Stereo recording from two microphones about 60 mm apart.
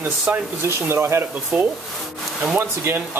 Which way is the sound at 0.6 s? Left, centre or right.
Right.